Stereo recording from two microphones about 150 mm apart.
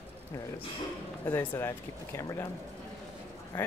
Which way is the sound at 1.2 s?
15° left (ahead or behind).